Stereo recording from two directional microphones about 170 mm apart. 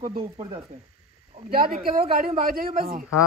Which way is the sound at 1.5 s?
60° right (ahead or behind).